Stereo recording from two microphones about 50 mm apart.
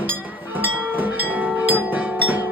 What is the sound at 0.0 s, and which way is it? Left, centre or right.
Music, right.